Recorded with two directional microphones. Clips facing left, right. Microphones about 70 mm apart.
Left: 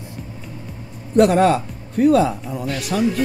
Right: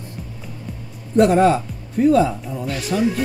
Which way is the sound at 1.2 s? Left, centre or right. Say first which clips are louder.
Even; left.